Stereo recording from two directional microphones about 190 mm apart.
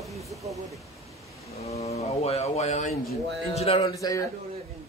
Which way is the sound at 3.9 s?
15° left (ahead or behind).